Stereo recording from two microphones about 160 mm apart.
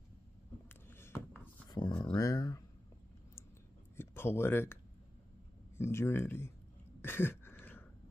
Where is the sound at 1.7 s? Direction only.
30° left (ahead or behind).